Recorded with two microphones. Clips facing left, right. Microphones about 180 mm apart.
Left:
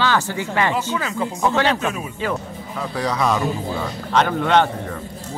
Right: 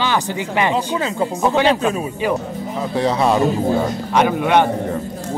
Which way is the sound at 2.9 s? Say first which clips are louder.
Right 4 dB; 30° right (ahead or behind).